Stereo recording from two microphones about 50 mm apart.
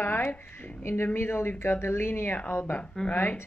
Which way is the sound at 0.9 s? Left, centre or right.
Left.